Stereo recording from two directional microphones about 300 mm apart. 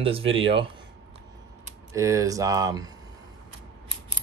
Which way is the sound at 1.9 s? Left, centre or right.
Centre.